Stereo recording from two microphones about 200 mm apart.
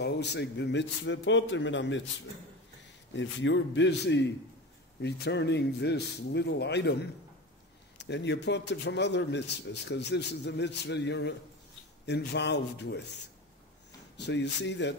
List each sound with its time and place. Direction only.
0.0 s a man's voice: 60° left (ahead or behind)
3.2 s a man's voice: 65° left (ahead or behind)
14.1 s a man's voice: 60° left (ahead or behind)